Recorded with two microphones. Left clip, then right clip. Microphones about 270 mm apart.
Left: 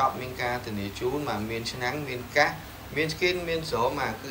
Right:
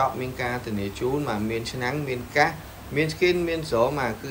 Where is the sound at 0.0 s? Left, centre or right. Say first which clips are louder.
Right 1 dB; centre.